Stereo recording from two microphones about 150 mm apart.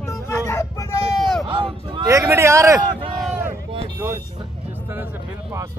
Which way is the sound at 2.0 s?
20° right (ahead or behind).